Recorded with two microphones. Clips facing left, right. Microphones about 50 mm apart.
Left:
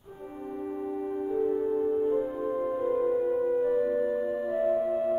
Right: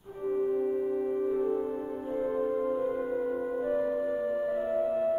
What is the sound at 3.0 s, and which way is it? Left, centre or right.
Singing bowl, centre.